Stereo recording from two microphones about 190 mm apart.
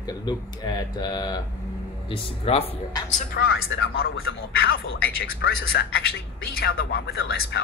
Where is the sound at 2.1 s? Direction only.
30° left (ahead or behind).